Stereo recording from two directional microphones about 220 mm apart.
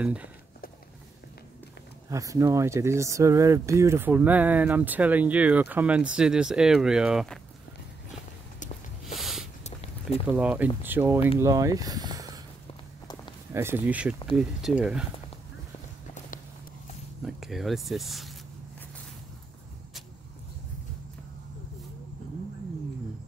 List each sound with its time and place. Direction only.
0.0 s speech: 5° right (ahead or behind)
2.0 s speech: 15° right (ahead or behind)
9.0 s a sound: centre (ahead or behind)
9.6 s a sound: 30° left (ahead or behind)
10.2 s speech: 5° right (ahead or behind)
13.5 s speech: 10° right (ahead or behind)
17.2 s speech: centre (ahead or behind)